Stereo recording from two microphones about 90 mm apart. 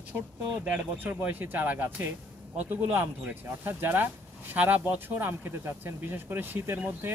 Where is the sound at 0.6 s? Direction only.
20° right (ahead or behind).